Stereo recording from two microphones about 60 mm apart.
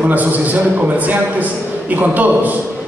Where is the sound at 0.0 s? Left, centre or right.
Right.